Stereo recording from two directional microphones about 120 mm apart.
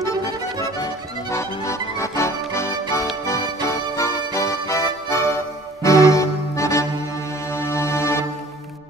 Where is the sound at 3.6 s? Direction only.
25° left (ahead or behind).